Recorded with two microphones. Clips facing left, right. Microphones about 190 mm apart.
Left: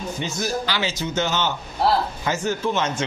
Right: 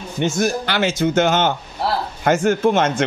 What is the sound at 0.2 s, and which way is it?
A man's voice, 55° right (ahead or behind).